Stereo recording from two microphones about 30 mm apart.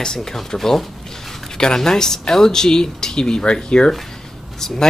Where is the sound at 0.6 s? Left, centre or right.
Centre.